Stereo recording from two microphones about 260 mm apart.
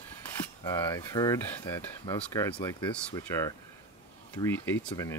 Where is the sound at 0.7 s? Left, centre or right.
Centre.